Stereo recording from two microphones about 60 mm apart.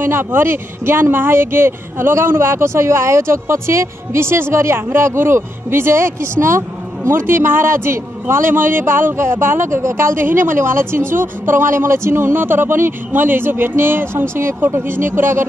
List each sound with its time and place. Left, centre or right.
0.0 s a man's voice: right